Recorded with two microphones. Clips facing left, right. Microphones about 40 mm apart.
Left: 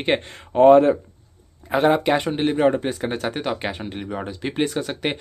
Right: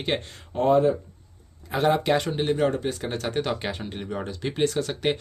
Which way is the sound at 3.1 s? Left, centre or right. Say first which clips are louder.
Left 2 dB; centre.